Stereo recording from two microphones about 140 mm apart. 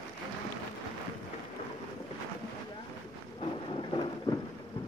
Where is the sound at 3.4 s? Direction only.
40° left (ahead or behind).